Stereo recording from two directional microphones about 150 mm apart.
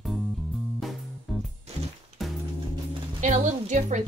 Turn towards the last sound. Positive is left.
turn(degrees=-55)  # may be behind; listen again after turning